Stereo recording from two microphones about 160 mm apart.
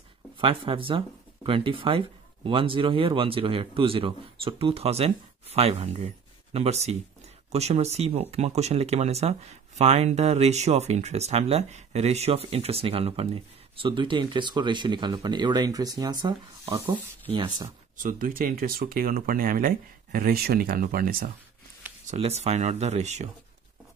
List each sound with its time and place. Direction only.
0.4 s speech: 35° right (ahead or behind); by 16.9 s 15° right (ahead or behind)
16.9 s speech: 30° right (ahead or behind)
17.9 s speech: 60° right (ahead or behind)
22.1 s speech: 40° right (ahead or behind)